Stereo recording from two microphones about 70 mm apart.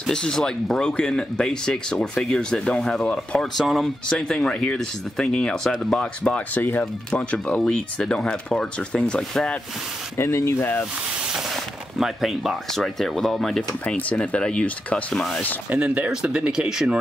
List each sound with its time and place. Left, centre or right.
0.0 s speech: centre
6.3 s speech: left
10.1 s speech: left
11.5 s speech: centre
13.6 s speech: left
15.7 s speech: right
16.1 s speech: centre